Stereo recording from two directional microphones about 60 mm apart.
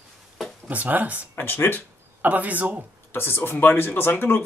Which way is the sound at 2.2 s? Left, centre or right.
Right.